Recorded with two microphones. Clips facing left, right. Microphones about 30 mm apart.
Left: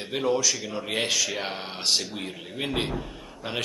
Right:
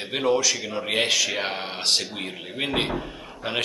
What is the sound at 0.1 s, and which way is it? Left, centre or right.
Speech, right.